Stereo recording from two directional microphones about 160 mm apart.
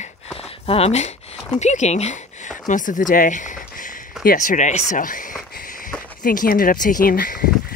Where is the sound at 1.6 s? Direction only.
45° left (ahead or behind).